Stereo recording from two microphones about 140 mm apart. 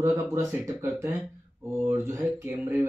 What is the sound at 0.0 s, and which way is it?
Speech, 20° right (ahead or behind).